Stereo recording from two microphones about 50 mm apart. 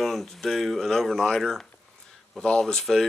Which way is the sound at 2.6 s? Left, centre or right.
Centre.